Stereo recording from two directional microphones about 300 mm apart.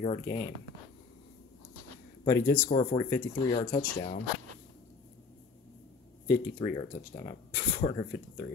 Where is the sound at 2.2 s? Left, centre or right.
Centre.